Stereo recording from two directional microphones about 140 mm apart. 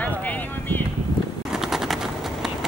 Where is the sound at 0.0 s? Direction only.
10° left (ahead or behind).